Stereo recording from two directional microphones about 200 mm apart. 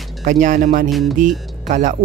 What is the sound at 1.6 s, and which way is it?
Speech, 35° right (ahead or behind).